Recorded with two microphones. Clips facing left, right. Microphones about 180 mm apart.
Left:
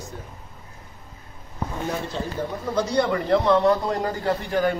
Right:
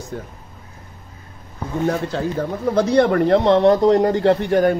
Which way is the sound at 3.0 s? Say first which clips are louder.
Right 4 dB; 55° right (ahead or behind).